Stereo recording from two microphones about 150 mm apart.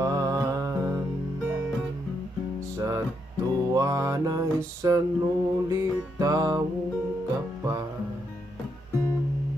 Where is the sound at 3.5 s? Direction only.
25° right (ahead or behind).